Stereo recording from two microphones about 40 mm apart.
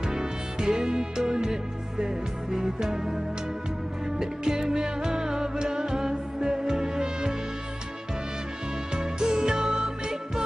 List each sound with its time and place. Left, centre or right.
0.1 s music: centre
4.2 s music: centre
8.9 s music: centre